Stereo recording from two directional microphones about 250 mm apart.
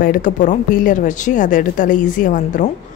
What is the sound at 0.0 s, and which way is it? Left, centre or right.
A woman's voice, left.